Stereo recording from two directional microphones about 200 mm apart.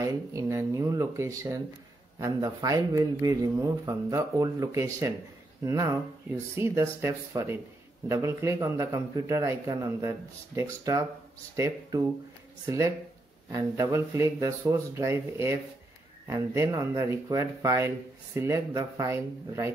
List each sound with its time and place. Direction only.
0.0 s speech: 15° right (ahead or behind)